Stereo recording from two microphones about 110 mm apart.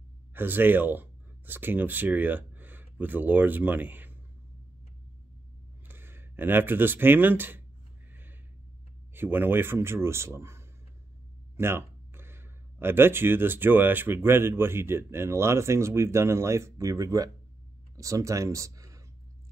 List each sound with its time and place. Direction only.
0.3 s speech: 20° right (ahead or behind)
5.9 s speech: 20° right (ahead or behind)
8.1 s a sound: 20° right (ahead or behind)
9.1 s speech: 20° right (ahead or behind)